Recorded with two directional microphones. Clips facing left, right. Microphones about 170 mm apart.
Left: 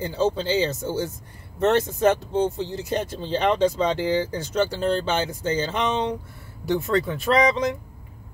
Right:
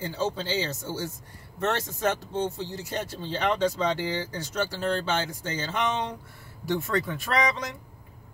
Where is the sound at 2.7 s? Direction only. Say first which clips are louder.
Left 6 dB; 20° left (ahead or behind).